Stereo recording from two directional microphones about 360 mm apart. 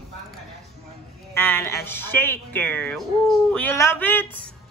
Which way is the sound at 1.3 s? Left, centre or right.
Centre.